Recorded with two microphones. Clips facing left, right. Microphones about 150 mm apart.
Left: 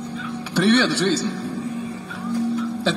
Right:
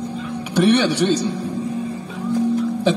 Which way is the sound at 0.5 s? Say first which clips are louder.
Right 2 dB; 15° right (ahead or behind).